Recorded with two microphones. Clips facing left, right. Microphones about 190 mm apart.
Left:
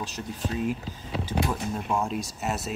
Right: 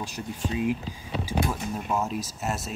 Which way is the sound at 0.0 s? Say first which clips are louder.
Even; 15° right (ahead or behind).